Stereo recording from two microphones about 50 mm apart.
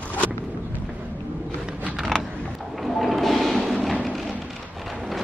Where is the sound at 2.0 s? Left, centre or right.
Centre.